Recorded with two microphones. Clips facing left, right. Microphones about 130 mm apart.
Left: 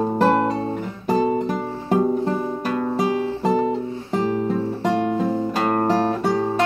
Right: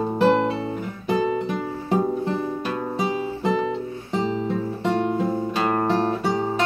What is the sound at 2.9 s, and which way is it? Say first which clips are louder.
Guitar: left 4 dB; 45° left (ahead or behind).